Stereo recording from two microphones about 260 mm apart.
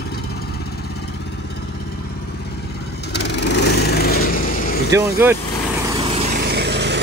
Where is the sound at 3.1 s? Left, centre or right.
Left.